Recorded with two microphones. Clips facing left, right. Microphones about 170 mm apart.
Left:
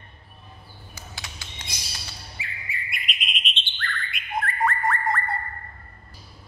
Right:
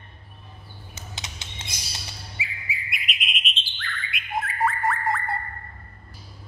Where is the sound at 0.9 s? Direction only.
20° right (ahead or behind).